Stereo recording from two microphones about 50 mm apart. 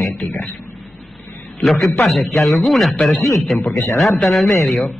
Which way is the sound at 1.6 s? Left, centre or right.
Centre.